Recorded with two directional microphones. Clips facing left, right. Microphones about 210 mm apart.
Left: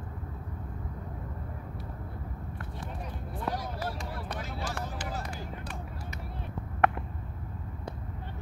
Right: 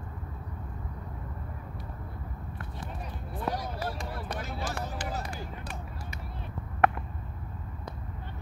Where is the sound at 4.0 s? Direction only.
45° right (ahead or behind).